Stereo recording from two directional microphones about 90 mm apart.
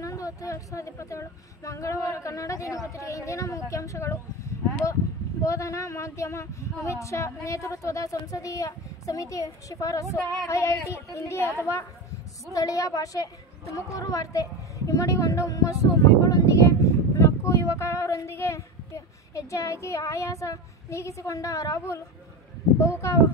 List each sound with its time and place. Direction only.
0.0 s a woman's voice: 40° left (ahead or behind)
12.5 s a woman's voice: 40° left (ahead or behind)